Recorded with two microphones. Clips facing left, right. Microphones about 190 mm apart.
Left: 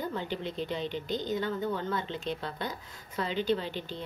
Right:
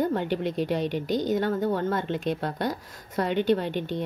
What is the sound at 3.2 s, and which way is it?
Speech, 60° right (ahead or behind).